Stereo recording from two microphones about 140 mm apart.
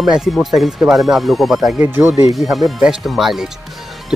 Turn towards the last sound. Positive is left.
turn(degrees=0)  # may be behind; listen again after turning